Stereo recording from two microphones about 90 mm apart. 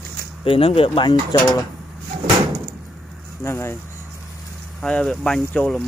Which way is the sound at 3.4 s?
30° left (ahead or behind).